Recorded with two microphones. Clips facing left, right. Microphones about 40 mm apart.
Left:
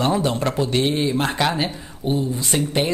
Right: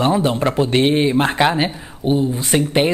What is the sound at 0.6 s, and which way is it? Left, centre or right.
Speech, right.